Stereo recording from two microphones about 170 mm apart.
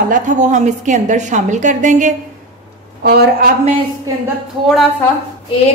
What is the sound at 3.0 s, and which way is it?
Speech, 70° right (ahead or behind).